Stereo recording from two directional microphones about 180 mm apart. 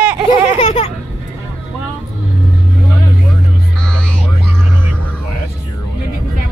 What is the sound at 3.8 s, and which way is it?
Music, 5° left (ahead or behind).